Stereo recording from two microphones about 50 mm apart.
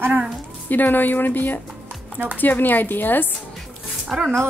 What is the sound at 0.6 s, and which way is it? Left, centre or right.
Speech, left.